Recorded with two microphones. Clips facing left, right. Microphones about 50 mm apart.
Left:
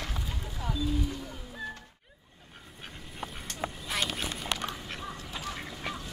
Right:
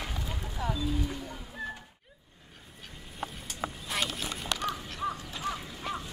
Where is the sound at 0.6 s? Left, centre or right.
Right.